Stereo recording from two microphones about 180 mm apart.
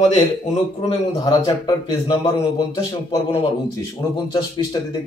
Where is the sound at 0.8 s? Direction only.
20° left (ahead or behind).